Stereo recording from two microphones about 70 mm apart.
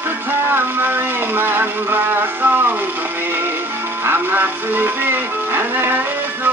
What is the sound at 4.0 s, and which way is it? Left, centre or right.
Music, right.